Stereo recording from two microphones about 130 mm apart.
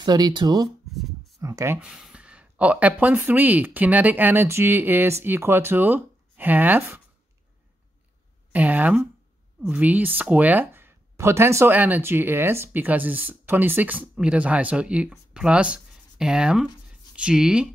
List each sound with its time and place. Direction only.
0.0 s speech: 35° right (ahead or behind)
0.9 s a sound: centre (ahead or behind)
1.4 s speech: 25° right (ahead or behind)
1.8 s speech: 5° right (ahead or behind)
8.5 s speech: 10° right (ahead or behind)